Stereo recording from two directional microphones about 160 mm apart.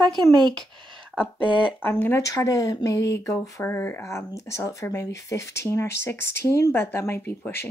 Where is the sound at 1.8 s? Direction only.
10° left (ahead or behind).